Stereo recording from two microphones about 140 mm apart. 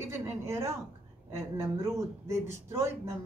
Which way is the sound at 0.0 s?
20° right (ahead or behind).